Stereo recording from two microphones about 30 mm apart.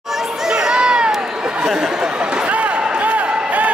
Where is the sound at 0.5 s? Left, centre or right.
Right.